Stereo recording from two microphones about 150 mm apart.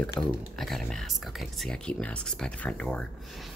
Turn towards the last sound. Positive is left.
turn(degrees=5)  # may be behind; listen again after turning